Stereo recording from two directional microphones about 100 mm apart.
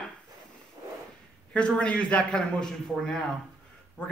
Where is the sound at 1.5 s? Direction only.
10° left (ahead or behind).